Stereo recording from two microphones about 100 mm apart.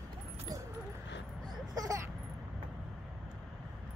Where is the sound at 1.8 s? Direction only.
35° right (ahead or behind).